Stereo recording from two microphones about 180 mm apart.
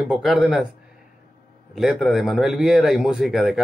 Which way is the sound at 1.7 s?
Centre (ahead or behind).